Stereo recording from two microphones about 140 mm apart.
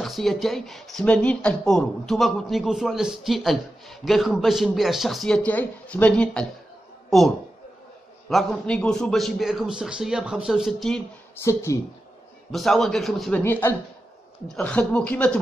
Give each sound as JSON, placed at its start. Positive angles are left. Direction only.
{"t": 0.0, "sound": "a woman's voice", "side_deg": 0}
{"t": 11.4, "sound": "speech", "side_deg": 20}
{"t": 12.4, "sound": "speech", "side_deg": 0}
{"t": 13.4, "sound": "speech", "side_deg": 15}